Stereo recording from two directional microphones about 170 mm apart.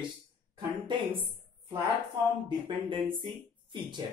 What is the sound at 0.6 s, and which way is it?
Speech, 30° right (ahead or behind).